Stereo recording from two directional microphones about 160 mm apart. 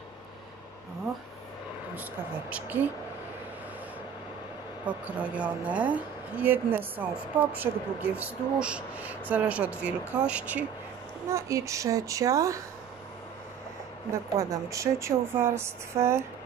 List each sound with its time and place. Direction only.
2.5 s speech: 10° right (ahead or behind)
4.8 s a woman's voice: 10° right (ahead or behind)
14.3 s speech: 20° right (ahead or behind)